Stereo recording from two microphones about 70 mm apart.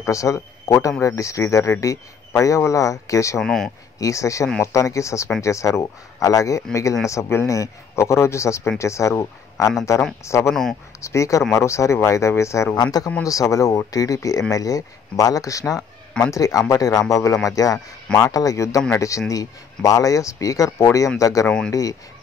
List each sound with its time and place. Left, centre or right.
0.0 s a man's voice: left
3.3 s speech: centre
4.0 s speech: left
10.5 s speech: centre
11.0 s speech: left
12.7 s speech: left
13.2 s speech: left
13.9 s speech: left
21.5 s speech: centre